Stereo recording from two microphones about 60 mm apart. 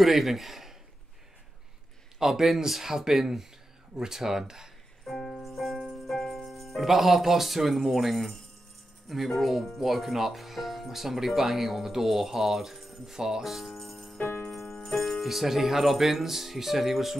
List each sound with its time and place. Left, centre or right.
0.0 s speech: centre
2.1 s speech: centre
5.0 s music: centre
9.1 s speech: centre
14.5 s music: centre
14.8 s speech: centre